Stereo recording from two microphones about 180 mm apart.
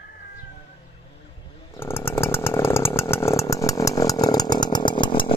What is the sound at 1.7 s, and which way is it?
Chainsaw, 15° left (ahead or behind).